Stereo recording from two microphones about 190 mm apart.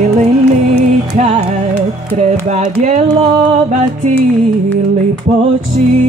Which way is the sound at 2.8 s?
40° right (ahead or behind).